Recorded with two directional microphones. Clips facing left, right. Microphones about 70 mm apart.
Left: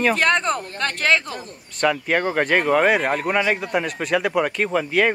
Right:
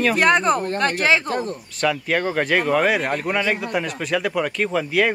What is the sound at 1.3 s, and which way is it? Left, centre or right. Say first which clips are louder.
Speech: right 9 dB; right.